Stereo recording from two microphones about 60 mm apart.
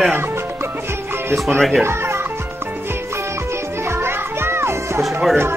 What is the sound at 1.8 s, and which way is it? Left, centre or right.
Music, right.